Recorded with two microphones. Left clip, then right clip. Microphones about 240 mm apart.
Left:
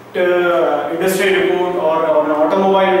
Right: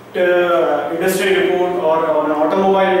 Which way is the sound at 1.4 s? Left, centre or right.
Centre.